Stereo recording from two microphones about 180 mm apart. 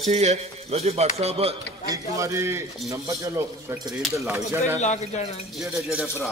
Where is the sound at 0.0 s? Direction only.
40° right (ahead or behind).